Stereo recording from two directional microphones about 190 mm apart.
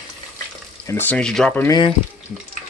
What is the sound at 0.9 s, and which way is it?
Speech, 10° left (ahead or behind).